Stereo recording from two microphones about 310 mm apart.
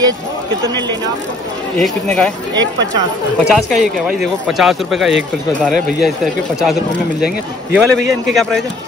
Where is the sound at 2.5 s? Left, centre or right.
Right.